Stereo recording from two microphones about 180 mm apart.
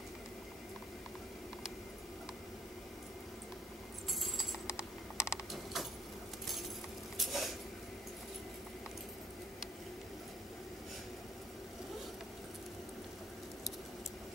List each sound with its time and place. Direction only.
4.6 s typing: 15° left (ahead or behind)
5.5 s keys jangling: centre (ahead or behind)
7.2 s a sound: centre (ahead or behind)